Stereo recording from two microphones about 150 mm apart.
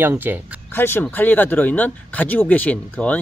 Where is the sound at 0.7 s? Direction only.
15° left (ahead or behind).